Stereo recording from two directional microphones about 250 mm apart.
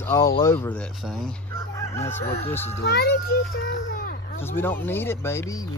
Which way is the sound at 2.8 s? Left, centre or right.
Left.